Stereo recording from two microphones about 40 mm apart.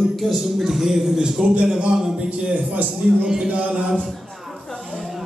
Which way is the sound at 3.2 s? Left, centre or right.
Right.